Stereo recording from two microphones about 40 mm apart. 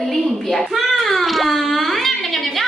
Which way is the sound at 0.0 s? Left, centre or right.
Centre.